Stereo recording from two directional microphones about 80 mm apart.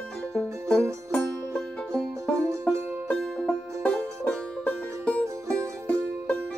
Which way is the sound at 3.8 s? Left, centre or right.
Centre.